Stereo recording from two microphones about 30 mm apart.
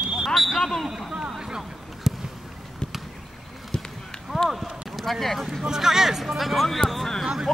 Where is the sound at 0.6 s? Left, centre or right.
Centre.